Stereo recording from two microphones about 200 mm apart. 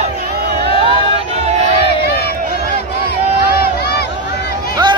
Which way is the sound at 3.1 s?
50° left (ahead or behind).